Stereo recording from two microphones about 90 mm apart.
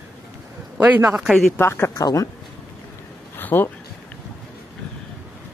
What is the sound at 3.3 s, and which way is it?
Speech, 25° left (ahead or behind).